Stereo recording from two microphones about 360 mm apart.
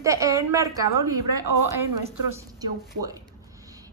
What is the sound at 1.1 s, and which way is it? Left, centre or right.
Speech, right.